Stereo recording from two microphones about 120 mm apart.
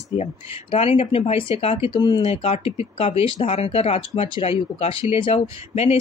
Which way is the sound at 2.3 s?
50° left (ahead or behind).